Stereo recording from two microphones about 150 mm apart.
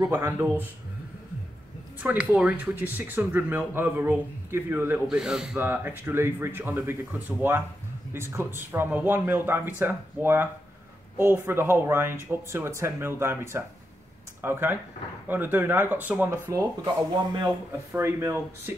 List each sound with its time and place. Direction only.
0.1 s speech: 15° right (ahead or behind)
2.0 s speech: 10° right (ahead or behind)
17.9 s speech: 15° right (ahead or behind)